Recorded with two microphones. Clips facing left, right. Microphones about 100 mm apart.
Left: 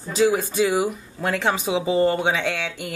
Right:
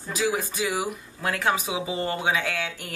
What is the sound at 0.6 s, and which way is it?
Speech, 30° left (ahead or behind).